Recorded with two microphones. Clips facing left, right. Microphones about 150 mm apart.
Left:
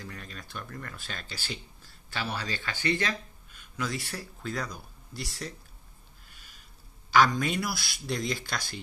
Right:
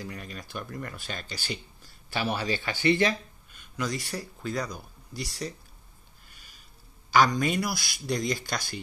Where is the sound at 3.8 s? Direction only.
5° left (ahead or behind).